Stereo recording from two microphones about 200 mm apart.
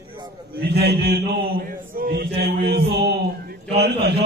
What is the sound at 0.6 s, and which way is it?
A man's voice, 55° right (ahead or behind).